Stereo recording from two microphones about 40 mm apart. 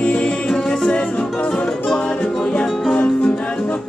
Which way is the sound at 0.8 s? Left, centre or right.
Left.